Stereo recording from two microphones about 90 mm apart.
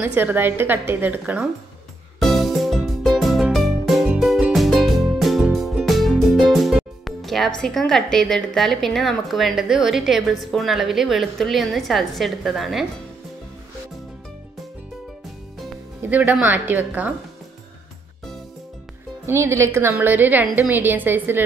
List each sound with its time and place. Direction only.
0.0 s a woman's voice: 20° right (ahead or behind)
2.1 s music: centre (ahead or behind)
7.1 s speech: centre (ahead or behind)
16.0 s a woman's voice: 20° right (ahead or behind)
19.2 s a woman's voice: 30° right (ahead or behind)